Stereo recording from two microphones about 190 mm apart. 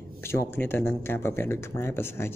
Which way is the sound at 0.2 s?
15° left (ahead or behind).